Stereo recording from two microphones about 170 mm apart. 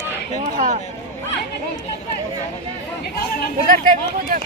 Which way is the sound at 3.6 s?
55° right (ahead or behind).